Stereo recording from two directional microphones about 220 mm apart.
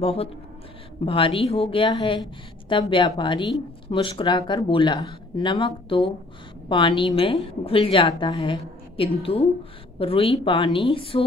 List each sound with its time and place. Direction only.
0.0 s speech: 25° left (ahead or behind)